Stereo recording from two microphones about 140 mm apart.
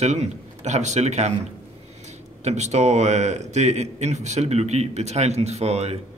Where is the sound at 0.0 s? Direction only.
55° right (ahead or behind).